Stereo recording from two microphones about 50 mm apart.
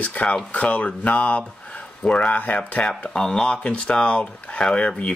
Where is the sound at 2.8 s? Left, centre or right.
Centre.